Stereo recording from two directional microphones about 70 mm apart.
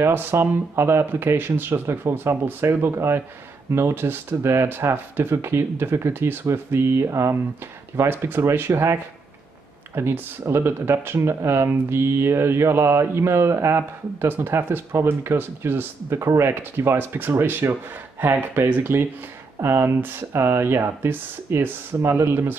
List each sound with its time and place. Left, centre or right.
0.0 s speech: right